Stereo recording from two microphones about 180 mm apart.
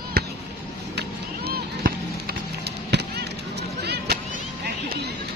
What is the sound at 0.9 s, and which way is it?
Chop, 60° right (ahead or behind).